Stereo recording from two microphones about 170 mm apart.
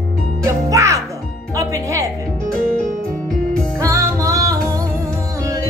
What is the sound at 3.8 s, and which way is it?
Music, 15° right (ahead or behind).